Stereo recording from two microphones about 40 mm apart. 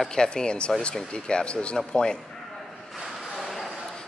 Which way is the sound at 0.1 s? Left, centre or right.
Centre.